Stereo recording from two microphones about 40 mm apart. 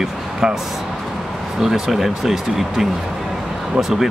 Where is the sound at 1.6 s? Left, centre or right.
Centre.